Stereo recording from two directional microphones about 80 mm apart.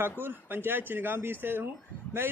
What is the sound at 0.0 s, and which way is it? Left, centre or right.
A man's voice, right.